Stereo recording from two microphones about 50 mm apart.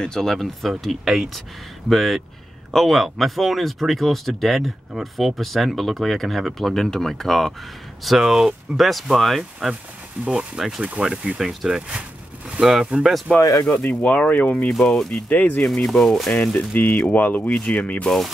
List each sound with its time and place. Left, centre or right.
0.0 s speech: centre
8.2 s speech: centre
10.2 s speech: centre
11.3 s speech: centre
13.3 s speech: centre
13.7 s speech: left
14.7 s speech: centre
15.2 s speech: left
15.6 s speech: centre
16.5 s speech: left